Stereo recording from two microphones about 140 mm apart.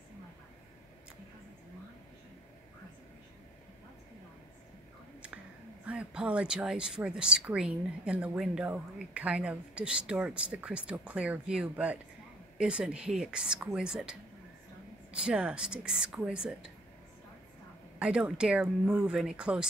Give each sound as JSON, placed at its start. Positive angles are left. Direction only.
{"t": 5.9, "sound": "a woman's voice", "side_deg": -5}
{"t": 17.9, "sound": "speech", "side_deg": -10}